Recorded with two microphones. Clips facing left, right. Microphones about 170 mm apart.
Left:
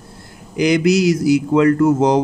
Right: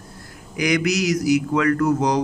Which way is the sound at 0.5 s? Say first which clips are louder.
Left 6 dB; 25° left (ahead or behind).